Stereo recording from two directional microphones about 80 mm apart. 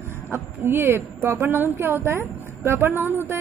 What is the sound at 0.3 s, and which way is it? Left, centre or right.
A woman's voice, right.